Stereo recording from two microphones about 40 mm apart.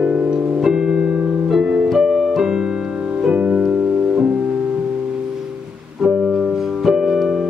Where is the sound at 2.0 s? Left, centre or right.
Centre; by 3.4 s right.